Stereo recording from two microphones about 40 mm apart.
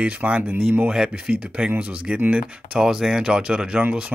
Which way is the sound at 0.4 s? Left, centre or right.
Right.